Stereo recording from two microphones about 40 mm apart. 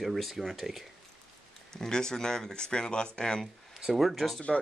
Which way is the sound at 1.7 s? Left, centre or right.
Centre.